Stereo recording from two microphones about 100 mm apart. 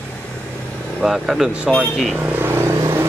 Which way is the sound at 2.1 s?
20° right (ahead or behind).